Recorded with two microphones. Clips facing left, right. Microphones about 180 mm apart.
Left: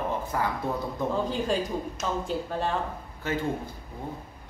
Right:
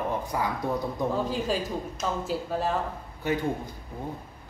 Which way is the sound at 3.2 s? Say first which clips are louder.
Right 2 dB; 15° right (ahead or behind).